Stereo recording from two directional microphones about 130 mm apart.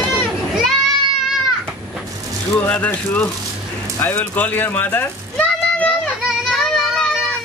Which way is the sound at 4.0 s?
15° left (ahead or behind).